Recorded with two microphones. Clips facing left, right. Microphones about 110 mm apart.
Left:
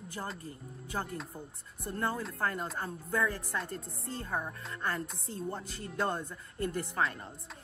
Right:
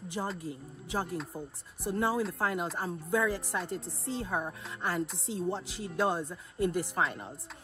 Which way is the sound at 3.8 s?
80° right.